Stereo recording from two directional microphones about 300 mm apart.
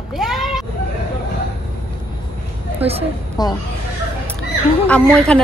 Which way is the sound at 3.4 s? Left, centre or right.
Centre.